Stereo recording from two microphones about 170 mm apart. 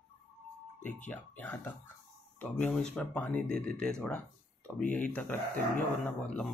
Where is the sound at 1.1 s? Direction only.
10° left (ahead or behind).